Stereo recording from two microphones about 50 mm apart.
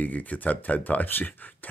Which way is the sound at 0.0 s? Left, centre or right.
Left.